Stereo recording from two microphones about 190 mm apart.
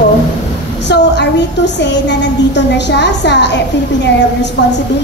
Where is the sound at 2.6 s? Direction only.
65° left (ahead or behind).